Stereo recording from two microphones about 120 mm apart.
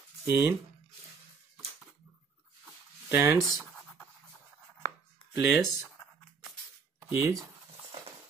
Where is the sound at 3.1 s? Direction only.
20° right (ahead or behind).